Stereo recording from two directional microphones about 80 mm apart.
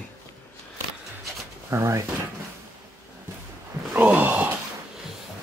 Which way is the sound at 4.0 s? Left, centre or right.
Centre.